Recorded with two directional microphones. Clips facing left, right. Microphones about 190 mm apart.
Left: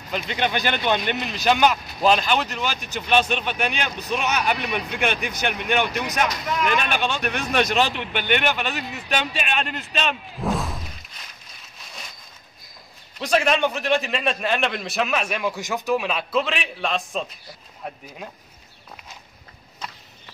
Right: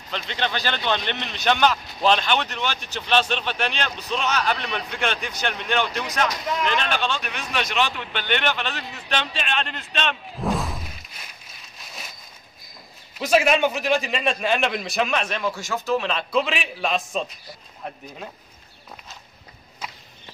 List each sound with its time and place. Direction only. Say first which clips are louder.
0.1 s speech: left 3 dB; 10° left (ahead or behind)
7.2 s speech: left 6 dB; 50° left (ahead or behind)
7.9 s speech: left 3 dB; 15° left (ahead or behind); by 10.9 s centre (ahead or behind)
13.2 s a man's voice: right 1 dB; 5° right (ahead or behind)
19.8 s a sound: even; 5° right (ahead or behind)